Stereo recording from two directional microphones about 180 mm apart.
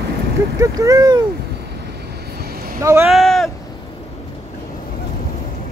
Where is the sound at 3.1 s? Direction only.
Centre (ahead or behind).